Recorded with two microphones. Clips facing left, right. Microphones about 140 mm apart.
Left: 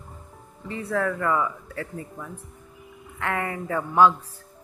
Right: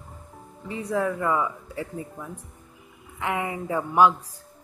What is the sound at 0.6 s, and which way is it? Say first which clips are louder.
Speech: even; 15° right (ahead or behind).